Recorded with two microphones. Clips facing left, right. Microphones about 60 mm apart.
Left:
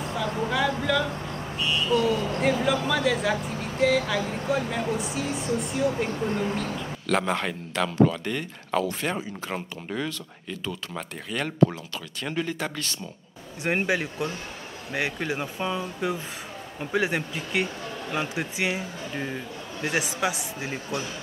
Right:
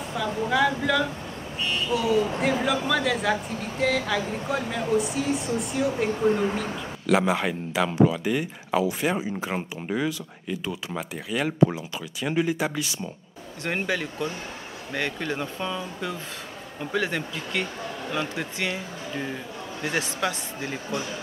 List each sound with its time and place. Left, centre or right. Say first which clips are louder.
0.2 s speech: right 3 dB; centre
13.7 s speech: left 2 dB; centre
19.9 s speech: left 1 dB; centre